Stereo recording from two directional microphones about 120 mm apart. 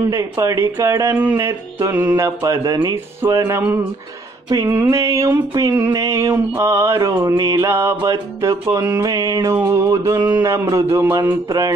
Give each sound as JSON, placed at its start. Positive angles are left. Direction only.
{"t": 0.1, "sound": "music", "side_deg": -25}
{"t": 9.0, "sound": "music", "side_deg": -30}